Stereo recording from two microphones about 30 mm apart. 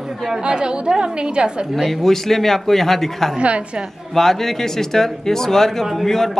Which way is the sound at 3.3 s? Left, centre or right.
Right.